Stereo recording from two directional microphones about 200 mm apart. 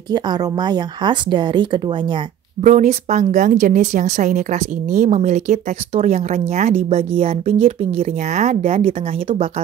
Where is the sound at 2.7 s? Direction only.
35° right (ahead or behind).